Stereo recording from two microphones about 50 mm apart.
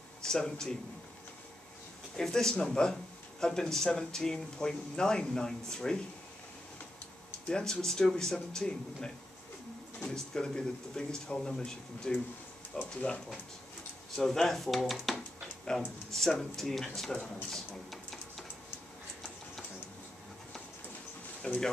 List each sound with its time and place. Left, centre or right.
0.2 s speech: centre
2.1 s speech: centre
7.4 s speech: centre
14.1 s speech: centre
15.7 s speech: centre
21.4 s speech: centre